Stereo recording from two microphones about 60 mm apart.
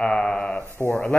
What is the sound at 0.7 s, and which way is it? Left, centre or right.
Speech, left.